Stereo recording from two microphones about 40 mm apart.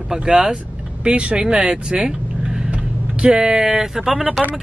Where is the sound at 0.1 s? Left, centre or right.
Centre.